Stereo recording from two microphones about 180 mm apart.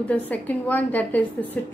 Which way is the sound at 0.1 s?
10° left (ahead or behind).